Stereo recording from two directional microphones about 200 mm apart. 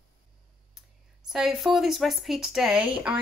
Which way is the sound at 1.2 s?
Centre (ahead or behind).